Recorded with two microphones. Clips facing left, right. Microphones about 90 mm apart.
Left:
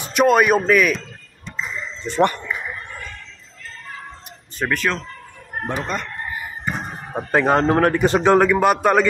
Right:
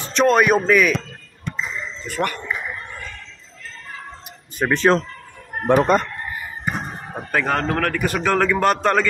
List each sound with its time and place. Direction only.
0.0 s speech: 10° left (ahead or behind)
1.5 s a sound: 60° right (ahead or behind)
2.0 s a man's voice: 25° left (ahead or behind)
4.7 s speech: 35° right (ahead or behind)
5.7 s speech: 50° right (ahead or behind)
7.2 s a man's voice: 20° left (ahead or behind)
8.5 s a man's voice: 10° left (ahead or behind)